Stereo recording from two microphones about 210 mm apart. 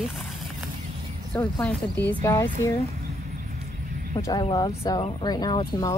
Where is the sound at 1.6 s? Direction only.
5° left (ahead or behind).